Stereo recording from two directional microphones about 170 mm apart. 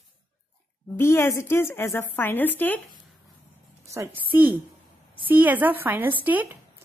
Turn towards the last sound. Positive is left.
turn(degrees=-10)  # may be behind; listen again after turning